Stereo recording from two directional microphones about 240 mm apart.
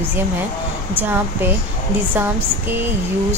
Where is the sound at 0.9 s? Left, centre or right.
Centre.